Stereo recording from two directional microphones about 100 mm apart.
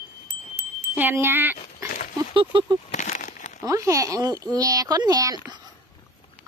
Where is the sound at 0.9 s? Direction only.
20° right (ahead or behind).